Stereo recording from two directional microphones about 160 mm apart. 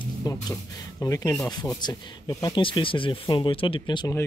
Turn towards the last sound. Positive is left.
turn(degrees=30)  # may be behind; listen again after turning